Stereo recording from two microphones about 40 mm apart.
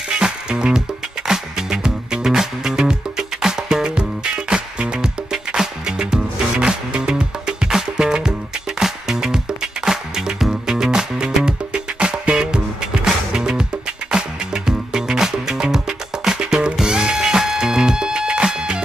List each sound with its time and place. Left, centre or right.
0.2 s music: right